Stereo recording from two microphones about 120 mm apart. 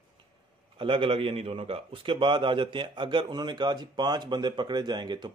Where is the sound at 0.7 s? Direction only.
45° right (ahead or behind).